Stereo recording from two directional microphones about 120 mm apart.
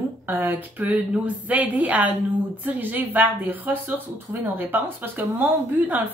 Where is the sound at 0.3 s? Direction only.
15° right (ahead or behind).